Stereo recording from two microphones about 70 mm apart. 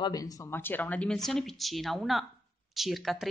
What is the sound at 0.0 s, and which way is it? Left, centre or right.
Speech, left.